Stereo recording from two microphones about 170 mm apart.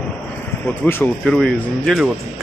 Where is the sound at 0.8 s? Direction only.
10° left (ahead or behind).